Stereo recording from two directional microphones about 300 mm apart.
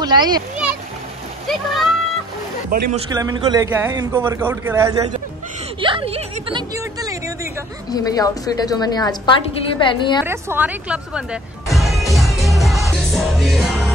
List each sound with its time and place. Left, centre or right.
0.0 s a child's voice: centre
2.9 s a man's voice: centre
7.9 s a woman's voice: centre
10.2 s a man's voice: centre
11.7 s music: centre